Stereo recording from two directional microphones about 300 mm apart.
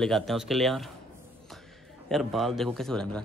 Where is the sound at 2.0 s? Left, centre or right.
Centre.